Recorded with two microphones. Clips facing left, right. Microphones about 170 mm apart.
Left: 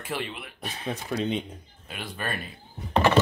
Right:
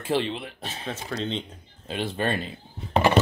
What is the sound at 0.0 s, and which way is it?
Speech, 30° right (ahead or behind).